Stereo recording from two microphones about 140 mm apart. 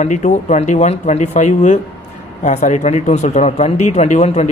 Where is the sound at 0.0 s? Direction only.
55° left (ahead or behind).